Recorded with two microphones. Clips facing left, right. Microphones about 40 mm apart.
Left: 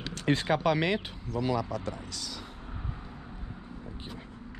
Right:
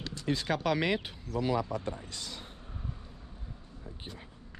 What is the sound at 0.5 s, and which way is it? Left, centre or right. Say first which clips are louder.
Speech: left 1 dB; centre.